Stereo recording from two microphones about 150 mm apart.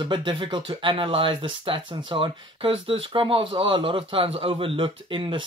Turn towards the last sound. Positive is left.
turn(degrees=-35)  # may be behind; listen again after turning